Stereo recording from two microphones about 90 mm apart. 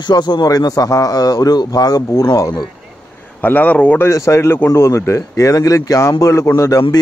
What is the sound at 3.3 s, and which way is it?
Speech, 20° left (ahead or behind).